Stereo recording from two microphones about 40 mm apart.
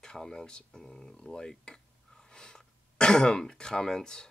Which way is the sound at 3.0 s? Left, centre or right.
Centre.